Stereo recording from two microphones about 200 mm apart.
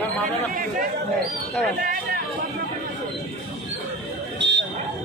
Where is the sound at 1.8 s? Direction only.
45° right (ahead or behind).